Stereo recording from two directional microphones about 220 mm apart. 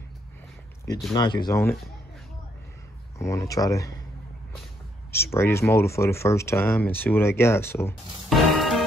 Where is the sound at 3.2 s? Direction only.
15° left (ahead or behind).